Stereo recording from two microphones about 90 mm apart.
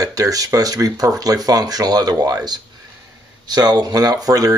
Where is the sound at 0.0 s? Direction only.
40° right (ahead or behind).